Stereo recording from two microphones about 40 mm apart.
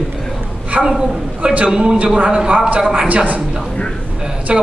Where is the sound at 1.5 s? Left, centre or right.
Right.